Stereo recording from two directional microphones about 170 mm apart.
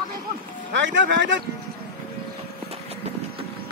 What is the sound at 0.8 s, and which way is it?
Speech, 90° right.